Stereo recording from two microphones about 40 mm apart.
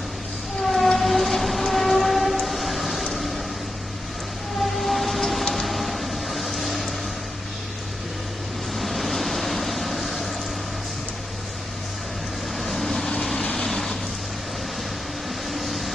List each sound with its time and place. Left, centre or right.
0.7 s train: centre
4.7 s vehicle: centre
5.5 s a sound: centre
8.7 s vehicle: centre
12.5 s vehicle: centre
13.4 s vehicle: left
13.7 s vehicle: centre
15.5 s vehicle: centre